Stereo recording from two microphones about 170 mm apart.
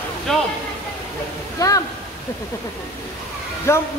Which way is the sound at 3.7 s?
15° left (ahead or behind).